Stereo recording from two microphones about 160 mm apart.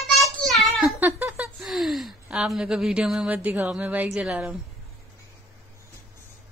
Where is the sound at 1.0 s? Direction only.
10° right (ahead or behind).